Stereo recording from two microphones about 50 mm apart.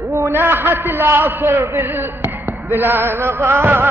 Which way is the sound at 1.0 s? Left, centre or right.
Right.